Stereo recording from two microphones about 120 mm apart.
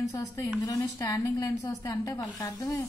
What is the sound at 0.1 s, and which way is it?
A woman's voice, 25° left (ahead or behind).